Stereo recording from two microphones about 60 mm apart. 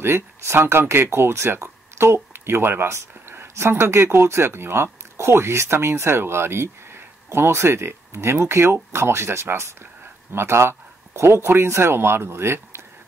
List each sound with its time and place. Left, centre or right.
0.0 s speech: right